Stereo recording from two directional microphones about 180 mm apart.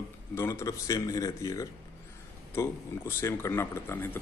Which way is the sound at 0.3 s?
15° left (ahead or behind).